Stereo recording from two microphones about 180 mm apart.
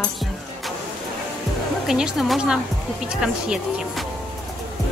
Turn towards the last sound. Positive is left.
turn(degrees=-5)  # may be behind; listen again after turning